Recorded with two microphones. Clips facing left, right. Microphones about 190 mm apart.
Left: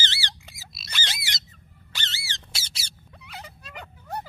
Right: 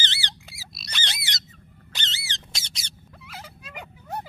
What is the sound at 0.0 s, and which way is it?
Bird, 20° right (ahead or behind).